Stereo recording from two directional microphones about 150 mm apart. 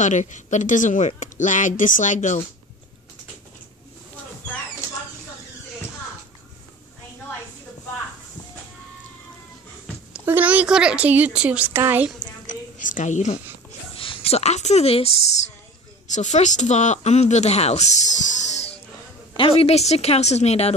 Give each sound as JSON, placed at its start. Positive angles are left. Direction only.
{"t": 0.0, "sound": "a woman's voice", "side_deg": 55}
{"t": 10.1, "sound": "a woman's voice", "side_deg": -10}
{"t": 12.4, "sound": "a sound", "side_deg": 55}
{"t": 13.7, "sound": "a sound", "side_deg": 40}
{"t": 16.1, "sound": "speech", "side_deg": 50}
{"t": 19.3, "sound": "speech", "side_deg": 40}